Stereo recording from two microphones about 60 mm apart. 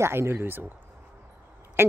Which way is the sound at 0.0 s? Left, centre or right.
Right.